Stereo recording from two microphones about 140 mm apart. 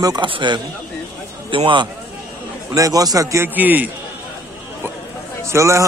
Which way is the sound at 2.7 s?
25° right (ahead or behind).